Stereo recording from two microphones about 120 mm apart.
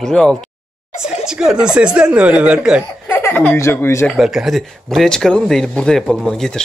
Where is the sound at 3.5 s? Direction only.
20° left (ahead or behind).